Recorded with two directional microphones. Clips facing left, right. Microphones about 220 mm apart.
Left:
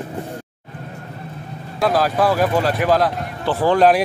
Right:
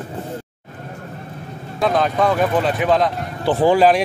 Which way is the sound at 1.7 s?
Centre (ahead or behind).